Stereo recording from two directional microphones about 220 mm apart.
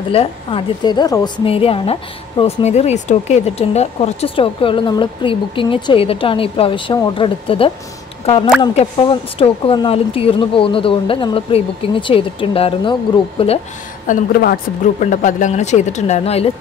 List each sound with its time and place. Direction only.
0.1 s a woman's voice: 25° left (ahead or behind)
14.0 s speech: 40° left (ahead or behind)